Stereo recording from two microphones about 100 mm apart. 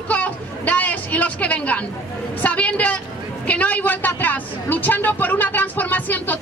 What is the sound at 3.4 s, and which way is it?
Vehicle, 15° left (ahead or behind).